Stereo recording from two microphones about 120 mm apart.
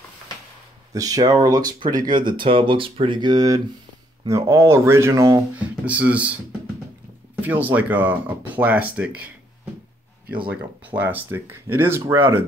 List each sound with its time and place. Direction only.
0.9 s speech: 30° right (ahead or behind)
5.9 s speech: 10° right (ahead or behind)
7.4 s speech: 15° right (ahead or behind)
11.0 s speech: 15° right (ahead or behind)